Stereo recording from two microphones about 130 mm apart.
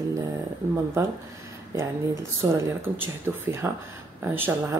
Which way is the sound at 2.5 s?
20° right (ahead or behind).